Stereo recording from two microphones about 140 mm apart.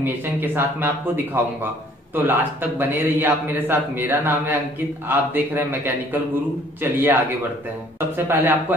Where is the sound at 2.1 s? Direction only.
15° right (ahead or behind).